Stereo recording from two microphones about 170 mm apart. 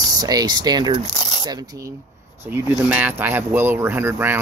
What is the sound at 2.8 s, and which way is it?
Speech, 10° right (ahead or behind).